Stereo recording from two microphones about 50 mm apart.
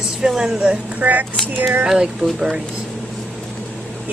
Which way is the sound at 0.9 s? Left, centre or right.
Right.